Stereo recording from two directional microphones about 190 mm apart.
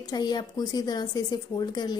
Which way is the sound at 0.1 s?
20° left (ahead or behind).